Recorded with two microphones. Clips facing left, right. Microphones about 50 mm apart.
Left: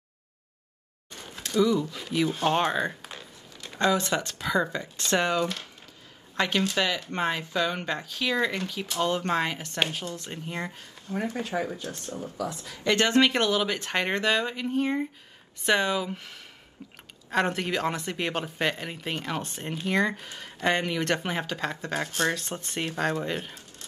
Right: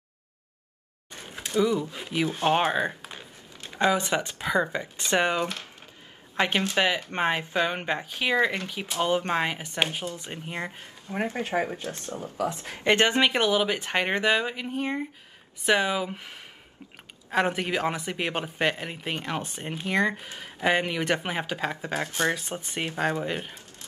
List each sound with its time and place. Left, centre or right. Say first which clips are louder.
1.3 s speech: left 1 dB; right
10.8 s speech: right 1 dB; right; by 23.6 s centre